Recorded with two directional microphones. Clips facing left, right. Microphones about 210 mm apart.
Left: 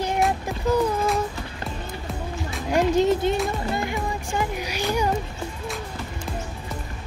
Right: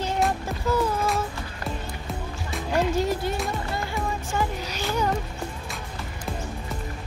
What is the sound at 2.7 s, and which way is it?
Speech, 20° left (ahead or behind).